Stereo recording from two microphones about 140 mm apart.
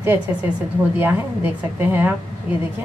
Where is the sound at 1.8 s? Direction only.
15° right (ahead or behind).